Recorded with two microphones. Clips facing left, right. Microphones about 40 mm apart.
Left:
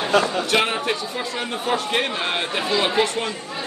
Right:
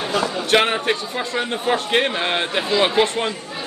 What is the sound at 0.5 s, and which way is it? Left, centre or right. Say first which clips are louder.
A man's voice: right 3 dB; right.